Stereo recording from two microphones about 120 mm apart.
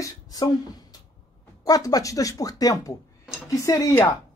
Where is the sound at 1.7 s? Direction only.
30° left (ahead or behind).